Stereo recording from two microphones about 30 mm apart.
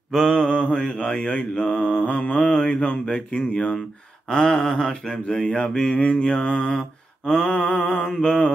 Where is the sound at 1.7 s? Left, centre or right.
Left.